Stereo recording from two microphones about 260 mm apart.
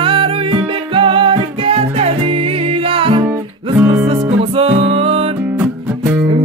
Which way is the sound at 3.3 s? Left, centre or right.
Centre.